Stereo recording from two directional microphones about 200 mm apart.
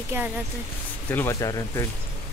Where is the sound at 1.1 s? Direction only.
15° left (ahead or behind).